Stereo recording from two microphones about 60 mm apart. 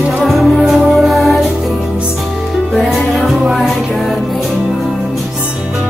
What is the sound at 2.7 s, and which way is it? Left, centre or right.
Music, centre.